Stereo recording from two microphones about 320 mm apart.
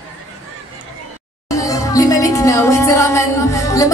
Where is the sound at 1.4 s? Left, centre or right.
Centre.